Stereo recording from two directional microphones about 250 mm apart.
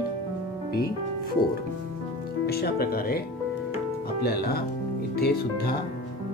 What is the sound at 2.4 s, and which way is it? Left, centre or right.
Speech, left.